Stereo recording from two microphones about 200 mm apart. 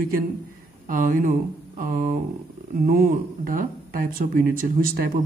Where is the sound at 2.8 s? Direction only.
45° right (ahead or behind).